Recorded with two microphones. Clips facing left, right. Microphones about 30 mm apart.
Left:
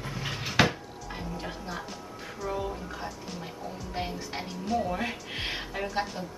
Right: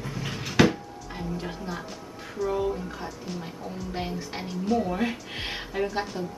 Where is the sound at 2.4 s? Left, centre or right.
Centre.